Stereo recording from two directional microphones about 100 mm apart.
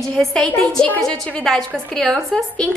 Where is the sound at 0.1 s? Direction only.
5° left (ahead or behind).